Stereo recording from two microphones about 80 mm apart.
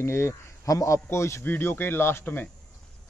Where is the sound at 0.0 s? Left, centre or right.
Left.